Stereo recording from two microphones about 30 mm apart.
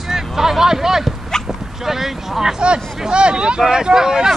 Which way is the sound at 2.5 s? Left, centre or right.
Right.